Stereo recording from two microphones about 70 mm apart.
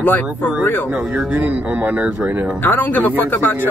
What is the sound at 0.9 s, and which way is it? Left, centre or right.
A man's voice, centre.